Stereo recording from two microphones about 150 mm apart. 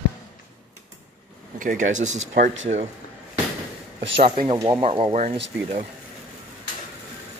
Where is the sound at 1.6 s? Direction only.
60° right (ahead or behind).